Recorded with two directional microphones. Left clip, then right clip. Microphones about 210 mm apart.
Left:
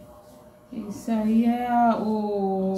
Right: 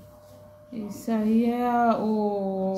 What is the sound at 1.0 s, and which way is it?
Speech, 40° right (ahead or behind).